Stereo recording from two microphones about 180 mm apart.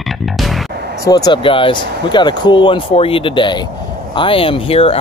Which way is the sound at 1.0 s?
20° left (ahead or behind).